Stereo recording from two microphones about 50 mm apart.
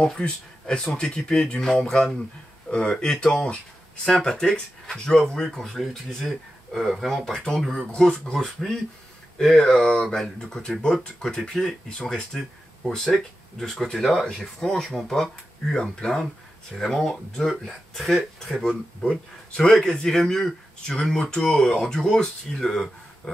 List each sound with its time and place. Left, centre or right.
0.0 s speech: centre
13.9 s speech: centre
14.3 s speech: centre